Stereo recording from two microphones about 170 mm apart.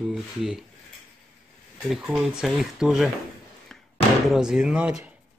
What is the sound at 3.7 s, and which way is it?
Slam, 5° left (ahead or behind).